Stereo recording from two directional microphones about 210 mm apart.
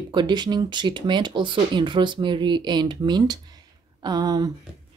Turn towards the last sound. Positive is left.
turn(degrees=-20)  # may be behind; listen again after turning